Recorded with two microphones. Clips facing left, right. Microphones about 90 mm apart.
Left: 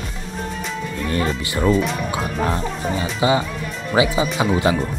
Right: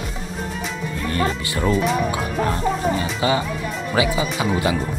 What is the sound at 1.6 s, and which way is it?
Speech, centre (ahead or behind).